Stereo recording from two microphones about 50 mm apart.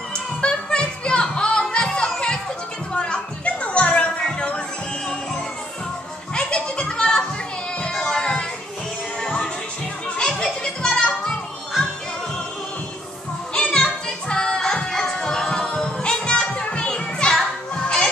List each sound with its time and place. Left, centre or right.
0.4 s music: centre
4.2 s music: centre
6.3 s children playing: centre
8.0 s a sound: centre
10.0 s music: centre
13.6 s music: centre